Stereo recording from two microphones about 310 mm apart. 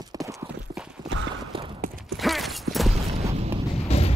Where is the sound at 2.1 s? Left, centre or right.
Centre.